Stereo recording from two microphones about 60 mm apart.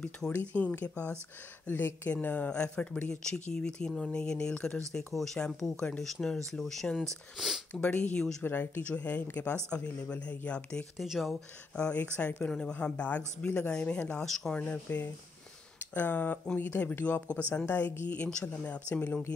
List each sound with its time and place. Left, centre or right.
0.3 s speech: left
1.7 s speech: left
2.2 s speech: left; by 7.1 s centre
7.3 s speech: centre
7.8 s speech: left
8.5 s speech: left; by 10.9 s centre
11.0 s speech: centre
11.7 s speech: centre
14.2 s speech: centre
14.9 s speech: left